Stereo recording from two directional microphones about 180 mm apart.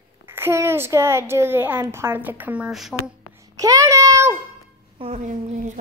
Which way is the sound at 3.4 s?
20° right (ahead or behind).